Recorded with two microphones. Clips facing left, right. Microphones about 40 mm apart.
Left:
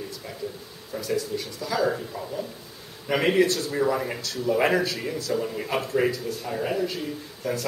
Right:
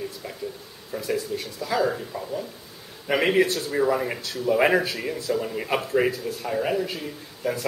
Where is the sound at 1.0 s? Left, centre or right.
Right.